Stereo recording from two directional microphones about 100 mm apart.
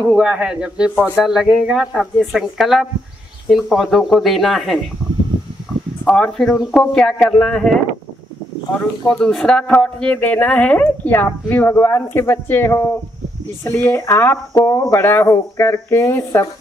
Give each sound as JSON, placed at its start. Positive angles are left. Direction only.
{"t": 0.0, "sound": "a man's voice", "side_deg": -10}
{"t": 6.0, "sound": "speech", "side_deg": 5}